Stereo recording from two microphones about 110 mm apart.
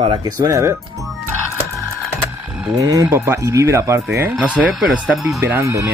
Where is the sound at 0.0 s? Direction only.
45° right (ahead or behind).